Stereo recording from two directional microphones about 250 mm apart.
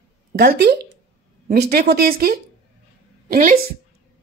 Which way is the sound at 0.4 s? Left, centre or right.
Right.